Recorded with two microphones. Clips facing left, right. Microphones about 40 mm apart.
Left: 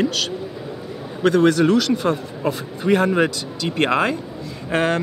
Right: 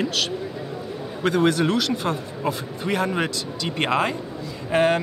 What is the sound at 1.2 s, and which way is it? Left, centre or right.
Speech, centre.